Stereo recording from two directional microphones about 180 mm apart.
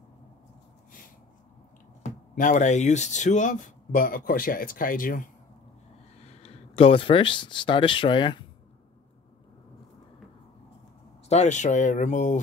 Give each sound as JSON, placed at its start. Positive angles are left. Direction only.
{"t": 2.0, "sound": "speech", "side_deg": 45}
{"t": 6.2, "sound": "speech", "side_deg": 35}
{"t": 11.2, "sound": "speech", "side_deg": 40}